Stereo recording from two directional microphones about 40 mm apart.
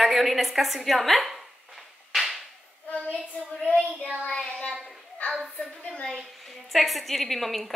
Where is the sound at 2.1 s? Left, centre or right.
Centre.